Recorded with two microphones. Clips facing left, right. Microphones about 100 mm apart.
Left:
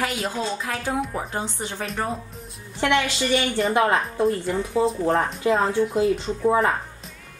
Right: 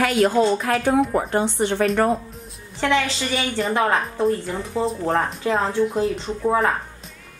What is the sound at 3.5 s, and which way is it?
Speech, 5° left (ahead or behind).